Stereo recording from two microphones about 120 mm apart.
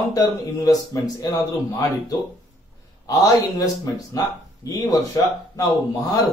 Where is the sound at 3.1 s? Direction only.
30° left (ahead or behind).